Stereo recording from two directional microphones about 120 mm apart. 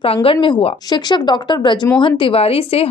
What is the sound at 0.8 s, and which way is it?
A woman's voice, 35° left (ahead or behind).